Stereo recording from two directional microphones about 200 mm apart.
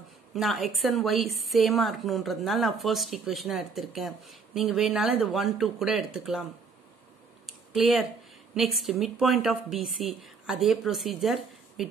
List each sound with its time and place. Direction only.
0.3 s a woman's voice: centre (ahead or behind)
7.4 s a sound: centre (ahead or behind)
8.5 s a woman's voice: centre (ahead or behind)